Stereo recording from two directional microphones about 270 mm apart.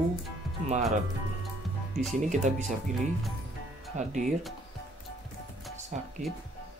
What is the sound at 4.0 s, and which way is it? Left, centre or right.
Speech, right.